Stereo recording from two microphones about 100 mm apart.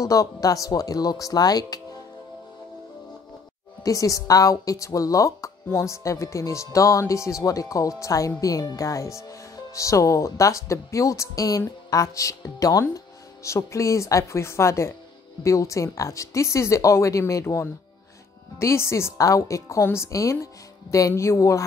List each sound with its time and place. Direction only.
0.0 s speech: 35° left (ahead or behind)
3.8 s a woman's voice: 35° left (ahead or behind)